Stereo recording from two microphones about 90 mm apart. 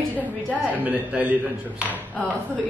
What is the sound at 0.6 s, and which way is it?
Speech, 15° right (ahead or behind).